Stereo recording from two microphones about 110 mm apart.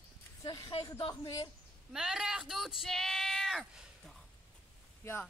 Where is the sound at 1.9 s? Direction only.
5° right (ahead or behind).